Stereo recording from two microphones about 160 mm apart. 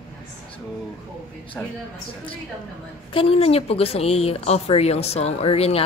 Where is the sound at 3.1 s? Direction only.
40° left (ahead or behind).